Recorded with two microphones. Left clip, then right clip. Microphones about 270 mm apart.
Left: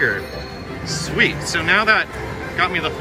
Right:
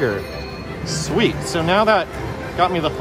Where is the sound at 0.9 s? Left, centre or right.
Centre.